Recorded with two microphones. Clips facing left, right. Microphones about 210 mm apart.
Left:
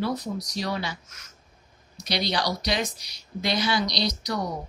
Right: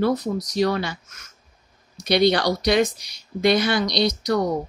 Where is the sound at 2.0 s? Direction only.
55° right (ahead or behind).